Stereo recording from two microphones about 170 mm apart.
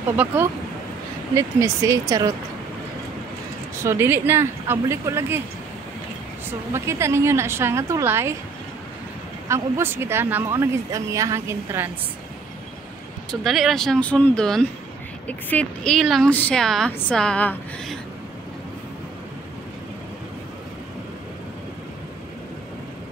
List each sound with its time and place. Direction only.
0.1 s speech: 10° right (ahead or behind)
3.7 s speech: 15° right (ahead or behind)
6.7 s speech: 15° right (ahead or behind)
9.5 s speech: 15° right (ahead or behind)
13.3 s a woman's voice: centre (ahead or behind)